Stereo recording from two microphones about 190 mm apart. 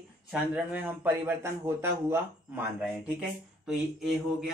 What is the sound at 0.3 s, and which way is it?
A man's voice, 10° right (ahead or behind).